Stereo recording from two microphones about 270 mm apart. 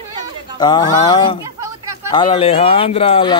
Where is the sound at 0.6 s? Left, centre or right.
Centre.